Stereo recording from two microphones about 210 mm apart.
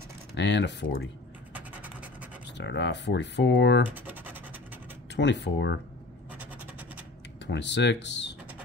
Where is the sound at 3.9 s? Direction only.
10° right (ahead or behind).